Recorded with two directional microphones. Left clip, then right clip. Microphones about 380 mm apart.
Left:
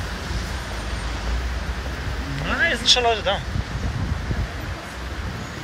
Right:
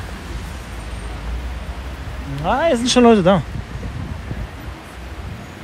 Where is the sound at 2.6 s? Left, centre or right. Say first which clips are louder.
Right 3 dB; centre.